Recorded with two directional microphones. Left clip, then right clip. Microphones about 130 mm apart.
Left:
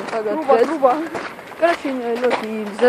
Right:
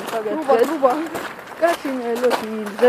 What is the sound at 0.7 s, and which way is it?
Speech, 65° right (ahead or behind).